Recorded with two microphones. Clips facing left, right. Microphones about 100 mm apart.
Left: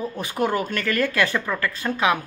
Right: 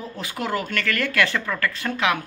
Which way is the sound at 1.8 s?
30° left (ahead or behind).